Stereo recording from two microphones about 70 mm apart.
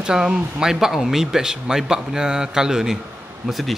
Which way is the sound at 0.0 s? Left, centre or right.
Centre.